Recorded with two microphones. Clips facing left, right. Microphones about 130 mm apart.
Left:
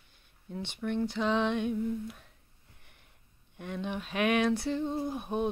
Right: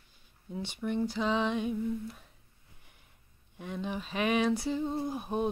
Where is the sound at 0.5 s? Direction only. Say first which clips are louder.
Even; 5° right (ahead or behind).